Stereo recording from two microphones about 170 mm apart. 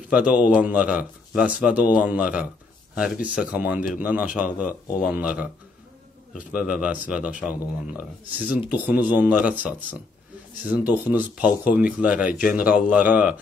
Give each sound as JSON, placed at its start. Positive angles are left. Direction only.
{"t": 0.1, "sound": "speech", "side_deg": -5}
{"t": 4.8, "sound": "speech", "side_deg": 55}
{"t": 5.1, "sound": "speech", "side_deg": -10}